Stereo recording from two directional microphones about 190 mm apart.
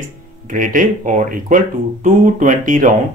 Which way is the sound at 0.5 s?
45° right (ahead or behind).